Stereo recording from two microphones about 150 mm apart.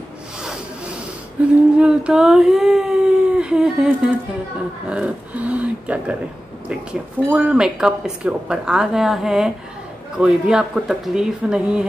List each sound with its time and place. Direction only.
1.4 s speech: 10° right (ahead or behind)